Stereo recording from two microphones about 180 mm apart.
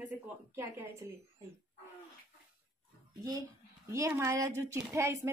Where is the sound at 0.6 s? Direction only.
15° right (ahead or behind).